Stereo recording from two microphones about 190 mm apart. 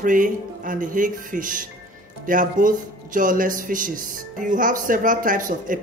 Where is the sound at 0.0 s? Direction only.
45° right (ahead or behind).